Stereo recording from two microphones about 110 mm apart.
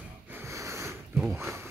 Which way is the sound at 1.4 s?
25° right (ahead or behind).